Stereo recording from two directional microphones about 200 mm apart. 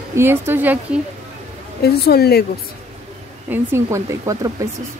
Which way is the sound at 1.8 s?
50° left (ahead or behind).